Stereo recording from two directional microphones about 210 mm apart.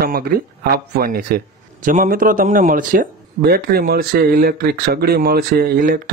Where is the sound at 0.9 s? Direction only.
45° right (ahead or behind).